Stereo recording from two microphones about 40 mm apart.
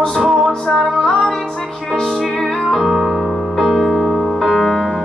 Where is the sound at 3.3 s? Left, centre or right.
Centre.